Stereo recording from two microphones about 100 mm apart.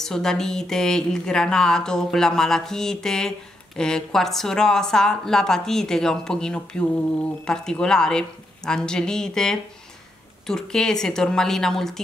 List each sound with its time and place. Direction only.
0.0 s a woman's voice: 5° left (ahead or behind)